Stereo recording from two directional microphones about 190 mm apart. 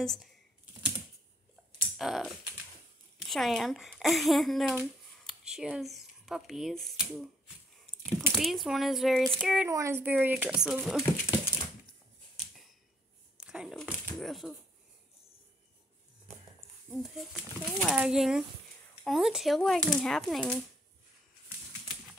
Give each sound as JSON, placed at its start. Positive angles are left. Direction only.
{"t": 0.0, "sound": "speech", "side_deg": 0}
{"t": 1.8, "sound": "typing", "side_deg": 0}
{"t": 3.2, "sound": "speech", "side_deg": 0}
{"t": 9.7, "sound": "speech", "side_deg": -15}
{"t": 11.2, "sound": "typewriter", "side_deg": 20}
{"t": 13.4, "sound": "a sound", "side_deg": -5}
{"t": 17.0, "sound": "speech", "side_deg": 0}